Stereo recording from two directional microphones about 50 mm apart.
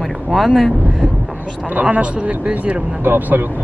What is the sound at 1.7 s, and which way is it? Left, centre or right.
Speech, right.